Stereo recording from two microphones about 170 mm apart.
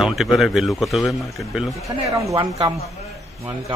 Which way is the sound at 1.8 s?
20° right (ahead or behind).